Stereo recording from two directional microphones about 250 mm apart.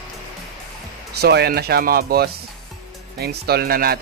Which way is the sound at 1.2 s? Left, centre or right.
Right.